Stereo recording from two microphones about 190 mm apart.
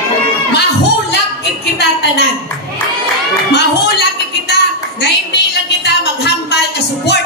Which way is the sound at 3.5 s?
60° left (ahead or behind).